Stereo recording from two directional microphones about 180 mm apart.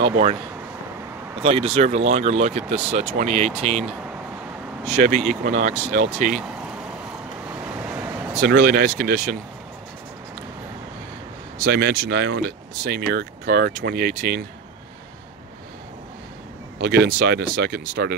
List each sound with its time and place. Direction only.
0.0 s speech: 35° right (ahead or behind)
1.4 s speech: 35° right (ahead or behind)
4.8 s speech: 40° right (ahead or behind)
7.8 s a sound: 10° right (ahead or behind)
8.4 s speech: 60° right (ahead or behind)
11.6 s speech: 70° right (ahead or behind)
16.8 s speech: 70° right (ahead or behind)